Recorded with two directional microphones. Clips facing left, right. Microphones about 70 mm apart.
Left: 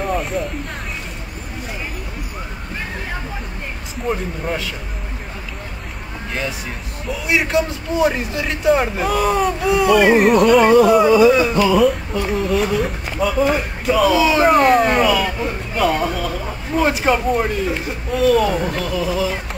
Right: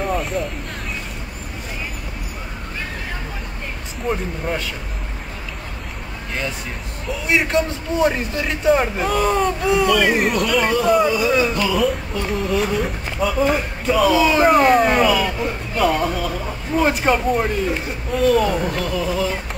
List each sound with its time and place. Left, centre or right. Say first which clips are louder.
0.0 s a sound: left 1 dB; centre
4.1 s speech: left 1 dB; centre
7.1 s speech: even; centre